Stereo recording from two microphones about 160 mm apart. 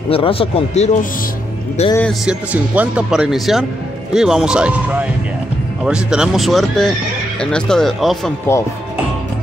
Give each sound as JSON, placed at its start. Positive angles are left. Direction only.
{"t": 0.1, "sound": "speech", "side_deg": 35}
{"t": 2.2, "sound": "speech", "side_deg": -10}